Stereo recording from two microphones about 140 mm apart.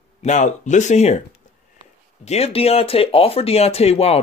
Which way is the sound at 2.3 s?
45° left (ahead or behind).